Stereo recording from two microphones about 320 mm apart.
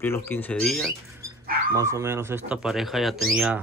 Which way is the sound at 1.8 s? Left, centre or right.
Centre.